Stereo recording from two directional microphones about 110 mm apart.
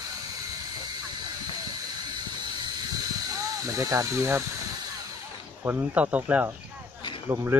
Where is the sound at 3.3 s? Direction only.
30° right (ahead or behind).